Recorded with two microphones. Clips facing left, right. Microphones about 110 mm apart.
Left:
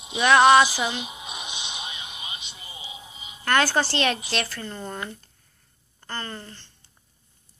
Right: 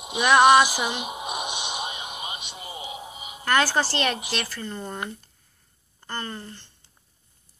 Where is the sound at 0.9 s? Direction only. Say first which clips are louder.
Right 4 dB; 55° right (ahead or behind).